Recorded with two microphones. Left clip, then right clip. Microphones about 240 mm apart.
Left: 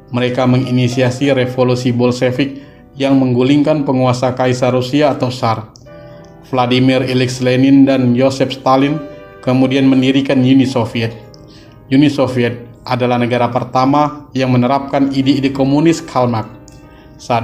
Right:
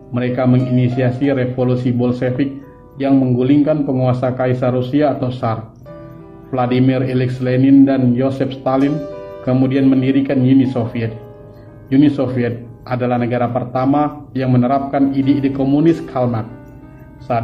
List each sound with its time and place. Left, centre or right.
0.1 s a man's voice: left